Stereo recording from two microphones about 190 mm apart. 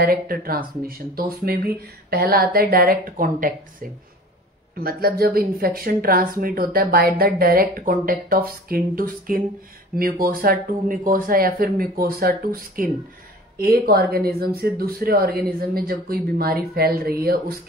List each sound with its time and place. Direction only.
0.0 s speech: 50° right (ahead or behind)
4.7 s speech: 50° right (ahead or behind)